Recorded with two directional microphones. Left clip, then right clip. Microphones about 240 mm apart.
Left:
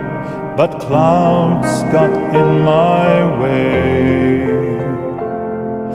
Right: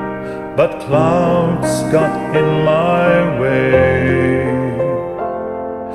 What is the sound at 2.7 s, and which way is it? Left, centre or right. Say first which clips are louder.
Music: left 1 dB; right.